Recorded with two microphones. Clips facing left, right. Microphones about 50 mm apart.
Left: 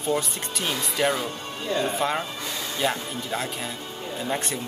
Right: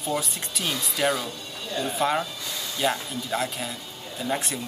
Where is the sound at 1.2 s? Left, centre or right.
Left.